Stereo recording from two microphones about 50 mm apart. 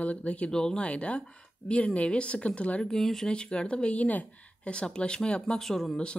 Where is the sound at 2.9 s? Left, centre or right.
Centre.